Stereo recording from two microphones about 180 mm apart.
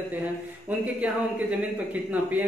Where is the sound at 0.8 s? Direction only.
10° right (ahead or behind).